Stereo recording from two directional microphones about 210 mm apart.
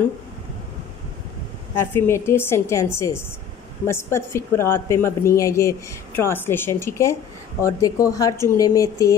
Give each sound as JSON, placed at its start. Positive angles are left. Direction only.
{"t": 1.8, "sound": "a woman's voice", "side_deg": 10}